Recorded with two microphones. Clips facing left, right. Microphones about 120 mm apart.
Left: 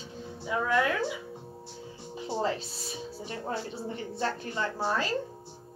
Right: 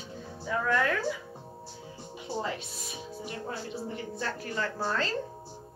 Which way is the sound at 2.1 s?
30° left (ahead or behind).